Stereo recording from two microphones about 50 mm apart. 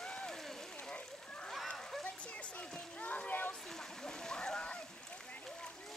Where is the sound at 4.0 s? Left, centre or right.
Centre.